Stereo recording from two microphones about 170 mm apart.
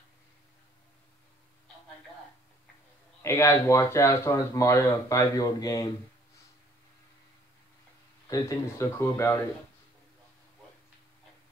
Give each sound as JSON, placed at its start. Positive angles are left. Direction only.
{"t": 3.2, "sound": "speech", "side_deg": 15}
{"t": 8.3, "sound": "speech", "side_deg": 20}